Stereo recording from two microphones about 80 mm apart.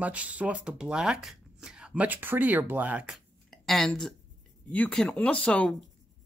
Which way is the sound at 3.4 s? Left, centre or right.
Centre.